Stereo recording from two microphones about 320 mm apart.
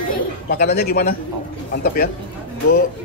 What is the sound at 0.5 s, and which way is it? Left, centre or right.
Speech, left.